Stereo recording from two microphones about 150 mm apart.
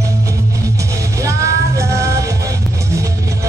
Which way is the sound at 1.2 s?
20° right (ahead or behind).